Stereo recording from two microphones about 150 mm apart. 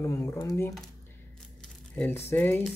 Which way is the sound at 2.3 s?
15° left (ahead or behind).